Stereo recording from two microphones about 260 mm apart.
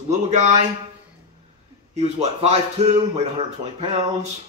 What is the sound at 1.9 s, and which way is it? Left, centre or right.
Speech, right.